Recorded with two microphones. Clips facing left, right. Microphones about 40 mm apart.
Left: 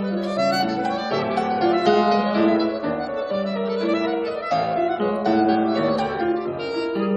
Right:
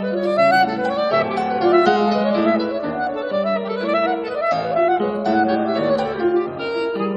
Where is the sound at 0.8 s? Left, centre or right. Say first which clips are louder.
Right 5 dB; centre.